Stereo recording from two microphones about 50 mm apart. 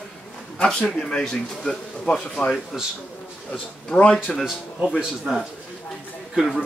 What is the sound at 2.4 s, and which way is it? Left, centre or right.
Speech, left.